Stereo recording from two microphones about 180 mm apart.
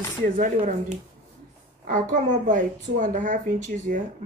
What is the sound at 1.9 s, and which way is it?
Speech, 45° right (ahead or behind).